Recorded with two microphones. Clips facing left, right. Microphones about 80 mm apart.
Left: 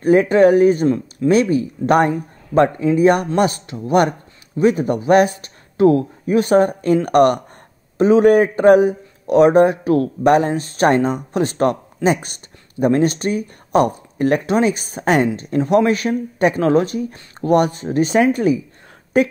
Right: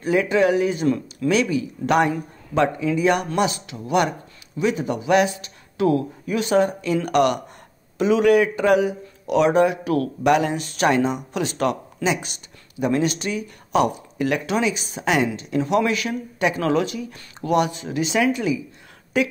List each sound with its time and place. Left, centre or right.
0.0 s speech: left
0.8 s speech: left
1.3 s a woman's voice: left